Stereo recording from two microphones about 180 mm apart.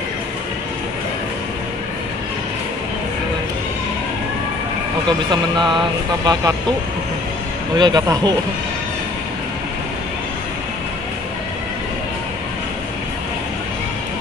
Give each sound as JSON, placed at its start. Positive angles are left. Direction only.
{"t": 5.3, "sound": "speech", "side_deg": -25}
{"t": 7.7, "sound": "speech", "side_deg": -25}